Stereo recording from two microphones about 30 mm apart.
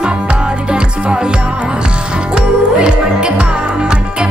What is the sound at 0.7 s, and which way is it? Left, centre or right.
Music, right.